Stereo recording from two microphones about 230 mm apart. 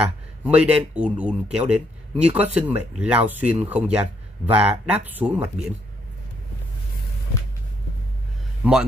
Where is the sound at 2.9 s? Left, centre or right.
Centre.